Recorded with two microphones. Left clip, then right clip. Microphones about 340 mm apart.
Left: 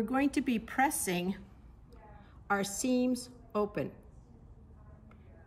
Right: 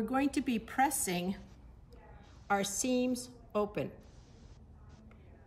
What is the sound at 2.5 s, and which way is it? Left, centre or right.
A woman's voice, centre.